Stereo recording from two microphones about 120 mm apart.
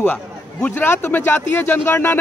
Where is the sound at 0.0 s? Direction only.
15° left (ahead or behind).